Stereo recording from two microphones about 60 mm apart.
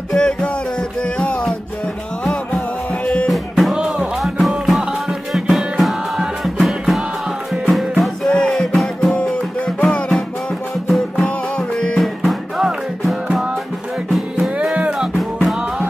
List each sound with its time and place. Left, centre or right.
0.1 s music: centre
3.3 s music: centre
3.7 s music: centre
4.2 s music: centre
8.3 s music: centre
9.1 s music: centre
12.2 s music: centre
14.6 s music: centre